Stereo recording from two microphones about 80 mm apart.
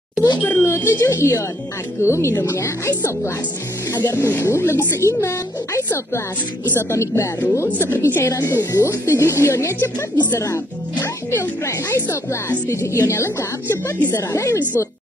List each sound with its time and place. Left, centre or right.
0.4 s speech: left
3.9 s speech: left
4.2 s speech: left
8.3 s speech: left
10.1 s speech: left
11.2 s a woman's voice: left